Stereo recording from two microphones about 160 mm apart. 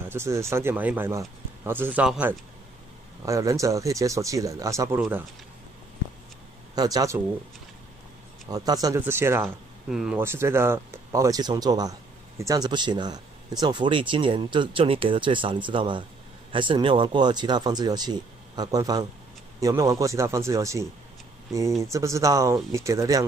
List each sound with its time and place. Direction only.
0.1 s speech: 15° right (ahead or behind)
3.3 s speech: 20° right (ahead or behind)
6.7 s speech: 25° right (ahead or behind)
8.5 s speech: 25° right (ahead or behind)
9.8 s speech: 5° right (ahead or behind)
10.2 s speech: 15° right (ahead or behind)